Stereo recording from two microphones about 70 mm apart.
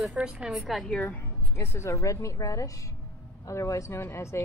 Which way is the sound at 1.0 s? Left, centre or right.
Left.